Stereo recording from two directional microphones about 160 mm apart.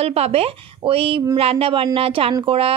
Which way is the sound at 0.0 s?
40° right (ahead or behind).